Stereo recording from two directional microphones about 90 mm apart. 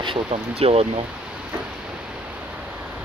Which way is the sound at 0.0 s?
80° right.